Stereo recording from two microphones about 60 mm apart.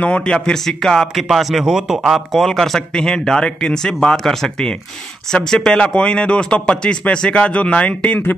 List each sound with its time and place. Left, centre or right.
0.0 s speech: centre